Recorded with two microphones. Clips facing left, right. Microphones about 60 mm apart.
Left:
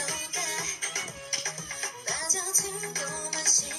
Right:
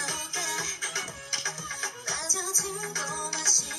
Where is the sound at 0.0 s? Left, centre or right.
Left.